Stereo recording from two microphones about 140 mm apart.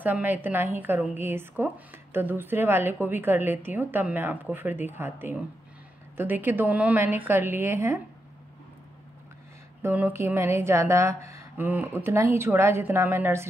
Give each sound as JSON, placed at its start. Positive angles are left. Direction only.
{"t": 0.0, "sound": "a woman's voice", "side_deg": -15}
{"t": 9.8, "sound": "a woman's voice", "side_deg": -15}